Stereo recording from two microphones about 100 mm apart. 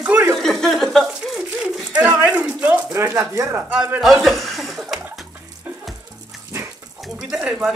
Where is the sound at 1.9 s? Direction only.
15° right (ahead or behind).